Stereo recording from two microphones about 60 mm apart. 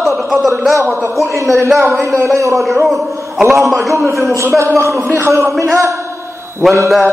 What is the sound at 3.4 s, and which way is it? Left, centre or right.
A man's voice, right.